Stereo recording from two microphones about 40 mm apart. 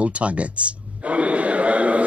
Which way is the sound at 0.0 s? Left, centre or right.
Right.